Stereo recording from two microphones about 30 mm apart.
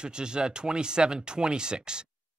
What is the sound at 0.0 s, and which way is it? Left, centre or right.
Speech, right.